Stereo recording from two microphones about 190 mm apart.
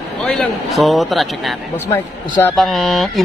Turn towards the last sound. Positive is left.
turn(degrees=0)  # may be behind; listen again after turning